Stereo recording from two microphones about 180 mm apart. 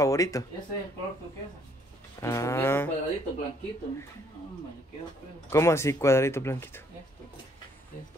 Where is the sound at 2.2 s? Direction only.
15° left (ahead or behind).